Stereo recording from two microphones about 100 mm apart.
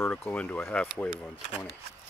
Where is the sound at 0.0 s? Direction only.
20° left (ahead or behind).